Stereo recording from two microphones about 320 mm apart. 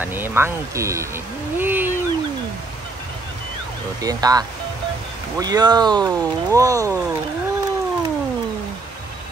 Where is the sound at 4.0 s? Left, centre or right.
Centre.